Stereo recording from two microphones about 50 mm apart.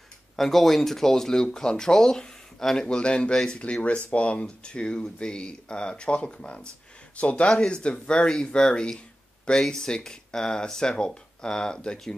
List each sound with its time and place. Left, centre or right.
0.4 s speech: centre